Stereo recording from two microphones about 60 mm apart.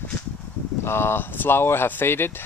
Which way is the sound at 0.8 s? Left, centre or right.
Left.